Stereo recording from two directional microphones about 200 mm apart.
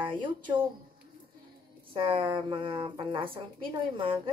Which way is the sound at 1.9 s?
25° right (ahead or behind).